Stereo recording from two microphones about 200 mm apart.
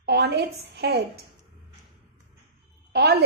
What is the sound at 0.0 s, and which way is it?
A woman's voice, 55° right (ahead or behind).